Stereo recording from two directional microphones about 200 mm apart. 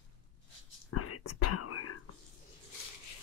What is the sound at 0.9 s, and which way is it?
Whispering, 90° left.